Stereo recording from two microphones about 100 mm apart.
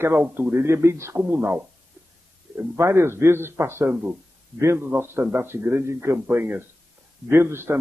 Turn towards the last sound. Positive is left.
turn(degrees=-25)  # may be behind; listen again after turning